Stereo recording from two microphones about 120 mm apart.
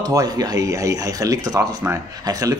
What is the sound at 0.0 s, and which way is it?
Speech, 30° right (ahead or behind).